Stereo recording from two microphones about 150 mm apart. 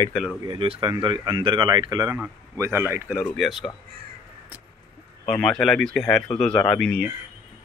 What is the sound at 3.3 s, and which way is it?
Speech, centre (ahead or behind).